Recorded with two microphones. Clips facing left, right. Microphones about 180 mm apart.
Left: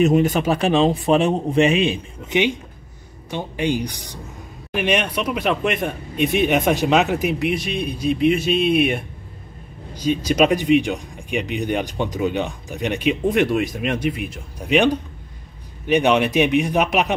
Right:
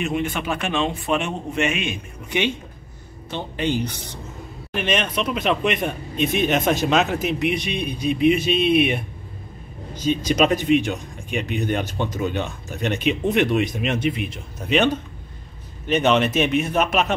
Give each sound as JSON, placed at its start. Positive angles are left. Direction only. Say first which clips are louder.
{"t": 0.0, "sound": "a man's voice", "louder": "left 8 dB", "side_deg": 40}
{"t": 2.2, "sound": "speech", "louder": "left 4 dB", "side_deg": 15}
{"t": 7.4, "sound": "speech", "louder": "left 1 dB", "side_deg": 0}